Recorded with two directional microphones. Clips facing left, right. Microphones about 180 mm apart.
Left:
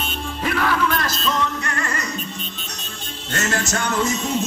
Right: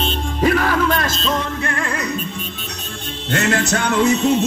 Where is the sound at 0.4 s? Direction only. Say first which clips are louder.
Right 4 dB; 45° right (ahead or behind).